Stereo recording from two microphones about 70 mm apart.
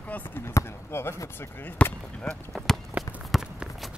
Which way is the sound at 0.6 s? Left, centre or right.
Left.